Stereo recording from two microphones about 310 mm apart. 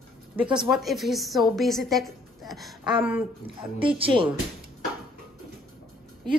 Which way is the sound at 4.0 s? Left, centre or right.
Centre.